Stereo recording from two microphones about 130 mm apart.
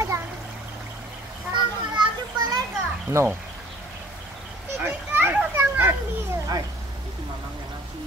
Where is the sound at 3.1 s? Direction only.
20° right (ahead or behind).